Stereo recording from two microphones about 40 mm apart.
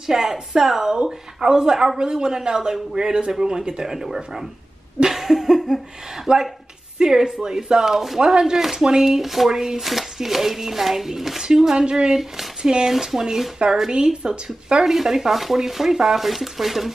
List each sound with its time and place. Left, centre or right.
0.0 s speech: centre
5.0 s laughter: centre
6.3 s speech: right
7.0 s speech: centre
12.2 s speech: centre; by 14.8 s right
14.8 s speech: centre